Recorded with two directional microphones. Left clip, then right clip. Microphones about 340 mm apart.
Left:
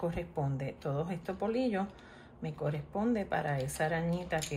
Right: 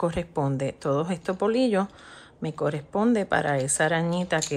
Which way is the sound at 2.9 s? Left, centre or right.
Centre.